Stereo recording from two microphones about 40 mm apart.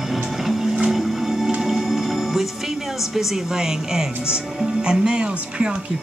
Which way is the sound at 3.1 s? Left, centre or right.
Centre.